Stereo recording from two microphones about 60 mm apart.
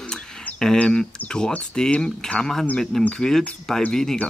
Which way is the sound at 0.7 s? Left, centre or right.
Centre.